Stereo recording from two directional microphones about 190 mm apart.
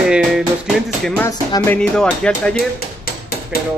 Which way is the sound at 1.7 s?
5° left (ahead or behind).